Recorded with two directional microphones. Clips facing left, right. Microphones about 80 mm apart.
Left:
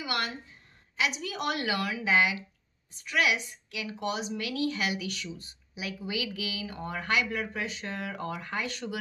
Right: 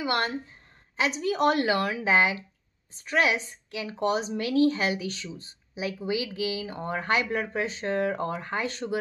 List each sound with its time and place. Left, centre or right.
0.0 s speech: right